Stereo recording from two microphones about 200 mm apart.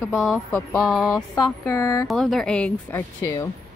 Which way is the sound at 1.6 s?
15° left (ahead or behind).